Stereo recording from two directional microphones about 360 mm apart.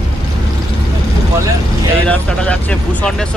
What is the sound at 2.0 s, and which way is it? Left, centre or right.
Speech, centre.